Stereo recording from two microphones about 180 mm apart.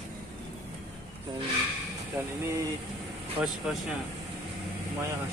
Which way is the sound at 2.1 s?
15° right (ahead or behind).